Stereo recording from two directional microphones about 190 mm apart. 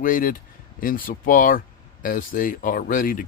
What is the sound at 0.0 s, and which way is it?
Speech, 45° left (ahead or behind).